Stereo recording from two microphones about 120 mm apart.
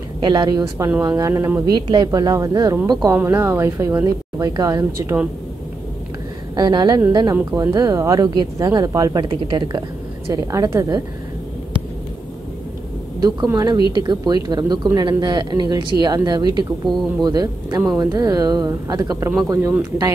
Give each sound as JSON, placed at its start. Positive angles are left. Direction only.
{"t": 0.2, "sound": "a woman's voice", "side_deg": -35}
{"t": 1.7, "sound": "a woman's voice", "side_deg": -40}
{"t": 3.3, "sound": "a woman's voice", "side_deg": -20}
{"t": 5.0, "sound": "speech", "side_deg": -15}
{"t": 6.5, "sound": "a woman's voice", "side_deg": -35}
{"t": 13.5, "sound": "a woman's voice", "side_deg": -30}